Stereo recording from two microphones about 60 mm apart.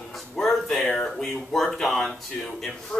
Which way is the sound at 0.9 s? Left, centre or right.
Centre.